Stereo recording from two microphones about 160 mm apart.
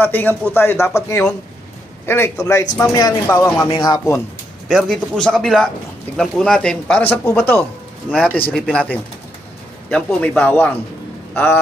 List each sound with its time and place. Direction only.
0.0 s a man's voice: 10° left (ahead or behind)
4.6 s a man's voice: centre (ahead or behind)